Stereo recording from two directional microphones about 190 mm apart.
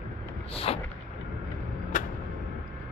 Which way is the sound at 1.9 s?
45° left (ahead or behind).